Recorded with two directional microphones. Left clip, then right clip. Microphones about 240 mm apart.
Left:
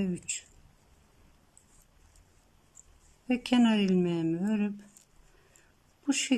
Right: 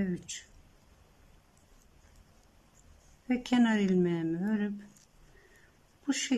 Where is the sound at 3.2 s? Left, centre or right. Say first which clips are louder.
Left 2 dB; centre.